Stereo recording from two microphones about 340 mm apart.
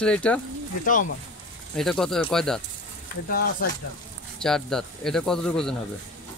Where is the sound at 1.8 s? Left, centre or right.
Centre.